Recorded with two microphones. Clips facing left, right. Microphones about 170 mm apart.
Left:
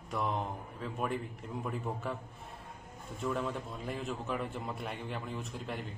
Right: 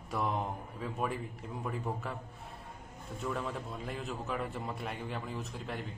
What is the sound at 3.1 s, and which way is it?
A man's voice, centre (ahead or behind).